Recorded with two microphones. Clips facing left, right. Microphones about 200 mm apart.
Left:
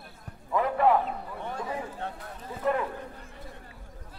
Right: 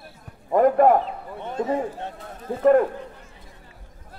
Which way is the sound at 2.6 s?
50° right (ahead or behind).